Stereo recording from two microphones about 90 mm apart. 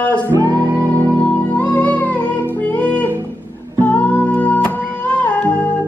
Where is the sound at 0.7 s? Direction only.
25° right (ahead or behind).